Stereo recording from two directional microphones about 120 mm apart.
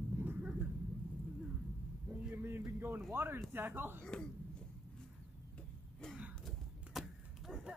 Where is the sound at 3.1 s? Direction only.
20° right (ahead or behind).